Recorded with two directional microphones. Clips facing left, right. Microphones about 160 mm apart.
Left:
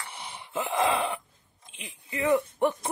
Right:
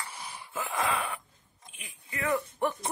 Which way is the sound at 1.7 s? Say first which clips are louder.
Left 5 dB; 25° left (ahead or behind).